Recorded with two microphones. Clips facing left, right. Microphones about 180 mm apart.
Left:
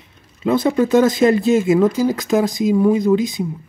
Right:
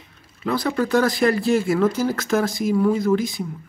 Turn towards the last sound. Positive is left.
turn(degrees=20)  # may be behind; listen again after turning